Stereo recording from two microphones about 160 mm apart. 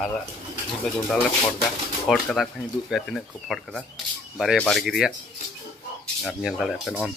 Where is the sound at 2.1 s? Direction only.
Centre (ahead or behind).